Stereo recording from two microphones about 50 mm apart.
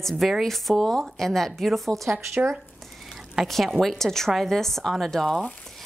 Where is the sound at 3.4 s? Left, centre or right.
Centre.